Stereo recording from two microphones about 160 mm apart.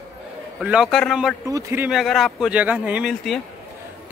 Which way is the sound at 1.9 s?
Centre (ahead or behind).